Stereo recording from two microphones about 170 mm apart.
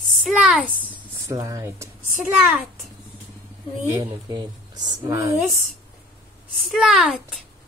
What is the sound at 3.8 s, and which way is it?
Speech, 20° right (ahead or behind).